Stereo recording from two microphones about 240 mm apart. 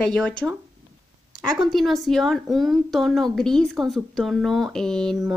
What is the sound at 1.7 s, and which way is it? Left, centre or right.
A woman's voice, centre.